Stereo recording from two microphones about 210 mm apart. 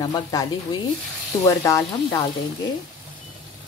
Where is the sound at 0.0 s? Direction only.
20° left (ahead or behind).